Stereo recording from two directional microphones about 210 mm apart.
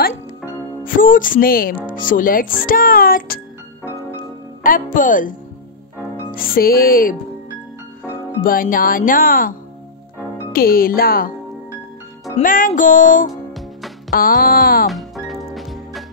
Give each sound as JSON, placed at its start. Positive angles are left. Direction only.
{"t": 0.8, "sound": "speech", "side_deg": 40}
{"t": 4.6, "sound": "speech", "side_deg": 40}
{"t": 6.3, "sound": "speech", "side_deg": 45}
{"t": 8.4, "sound": "speech", "side_deg": 40}
{"t": 12.4, "sound": "speech", "side_deg": 40}
{"t": 13.3, "sound": "music", "side_deg": 0}
{"t": 14.1, "sound": "speech", "side_deg": 45}
{"t": 14.9, "sound": "music", "side_deg": 0}